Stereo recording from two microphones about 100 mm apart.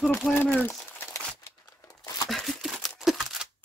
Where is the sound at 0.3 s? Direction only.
15° left (ahead or behind).